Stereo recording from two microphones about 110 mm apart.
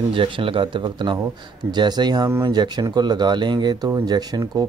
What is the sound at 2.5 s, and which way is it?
Speech, 40° right (ahead or behind).